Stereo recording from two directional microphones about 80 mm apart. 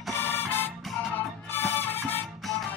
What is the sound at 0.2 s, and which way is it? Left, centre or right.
Music, left.